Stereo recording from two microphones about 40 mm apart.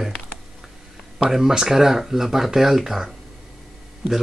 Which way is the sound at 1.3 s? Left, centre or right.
Centre.